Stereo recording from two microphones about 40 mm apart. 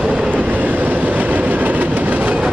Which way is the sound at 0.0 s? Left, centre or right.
Right.